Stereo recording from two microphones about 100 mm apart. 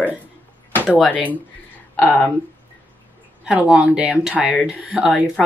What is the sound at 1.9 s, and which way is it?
Speech, 15° left (ahead or behind).